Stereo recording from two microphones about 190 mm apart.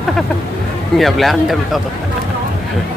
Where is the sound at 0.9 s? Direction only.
Centre (ahead or behind).